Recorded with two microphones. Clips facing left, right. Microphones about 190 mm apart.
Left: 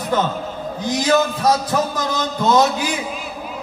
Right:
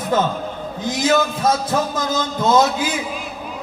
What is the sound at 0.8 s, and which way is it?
A man's voice, 25° right (ahead or behind).